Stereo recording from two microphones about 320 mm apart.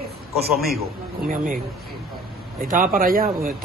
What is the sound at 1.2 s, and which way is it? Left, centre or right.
Speech, right.